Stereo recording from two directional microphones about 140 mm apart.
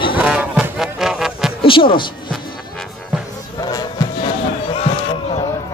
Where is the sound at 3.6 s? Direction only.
30° left (ahead or behind).